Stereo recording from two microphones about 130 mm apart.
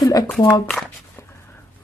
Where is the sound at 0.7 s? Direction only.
5° left (ahead or behind).